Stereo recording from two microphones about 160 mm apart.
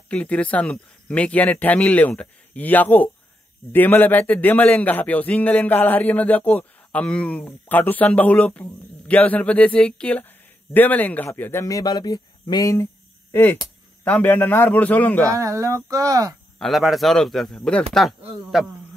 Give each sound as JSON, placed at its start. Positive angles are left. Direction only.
{"t": 0.1, "sound": "a man's voice", "side_deg": 10}
{"t": 13.3, "sound": "a man's voice", "side_deg": 15}
{"t": 15.2, "sound": "speech", "side_deg": -20}
{"t": 16.5, "sound": "a man's voice", "side_deg": 0}